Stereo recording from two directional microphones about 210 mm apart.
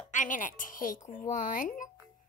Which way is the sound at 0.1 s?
35° left (ahead or behind).